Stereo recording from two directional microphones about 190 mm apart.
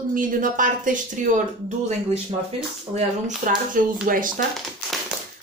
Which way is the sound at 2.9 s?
40° right (ahead or behind).